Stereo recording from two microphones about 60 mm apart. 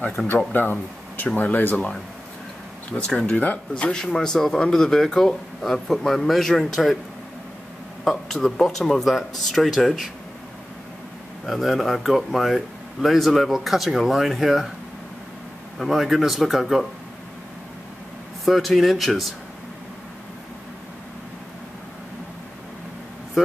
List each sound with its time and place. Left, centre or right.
0.5 s speech: left
3.1 s speech: centre
8.0 s speech: centre
11.4 s speech: centre
15.8 s speech: centre
18.4 s speech: centre
23.4 s speech: centre